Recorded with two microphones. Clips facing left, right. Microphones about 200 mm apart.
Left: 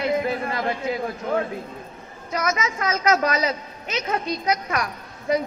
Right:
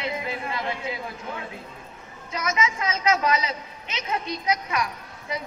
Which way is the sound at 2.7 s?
50° left (ahead or behind).